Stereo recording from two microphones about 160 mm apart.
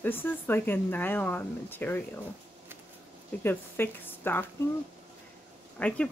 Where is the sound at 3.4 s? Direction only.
15° left (ahead or behind).